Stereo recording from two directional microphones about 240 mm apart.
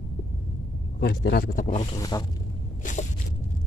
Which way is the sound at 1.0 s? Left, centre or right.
Left.